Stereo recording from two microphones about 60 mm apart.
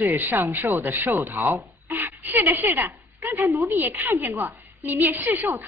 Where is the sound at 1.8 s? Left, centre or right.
Right.